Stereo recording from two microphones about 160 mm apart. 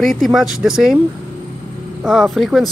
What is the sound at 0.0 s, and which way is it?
Speech, centre (ahead or behind).